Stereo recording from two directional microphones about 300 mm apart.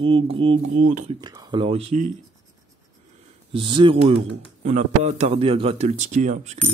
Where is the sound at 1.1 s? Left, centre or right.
Centre.